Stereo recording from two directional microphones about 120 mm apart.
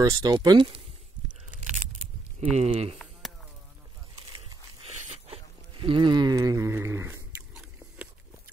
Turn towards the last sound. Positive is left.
turn(degrees=-20)  # may be behind; listen again after turning